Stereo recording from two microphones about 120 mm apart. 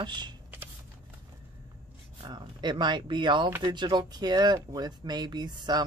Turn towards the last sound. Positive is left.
turn(degrees=-35)  # may be behind; listen again after turning